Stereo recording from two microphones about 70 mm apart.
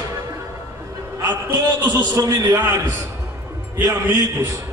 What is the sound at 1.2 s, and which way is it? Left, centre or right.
Speech, right.